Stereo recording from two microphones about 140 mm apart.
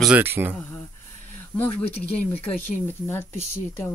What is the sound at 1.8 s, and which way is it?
Speech, 45° left (ahead or behind).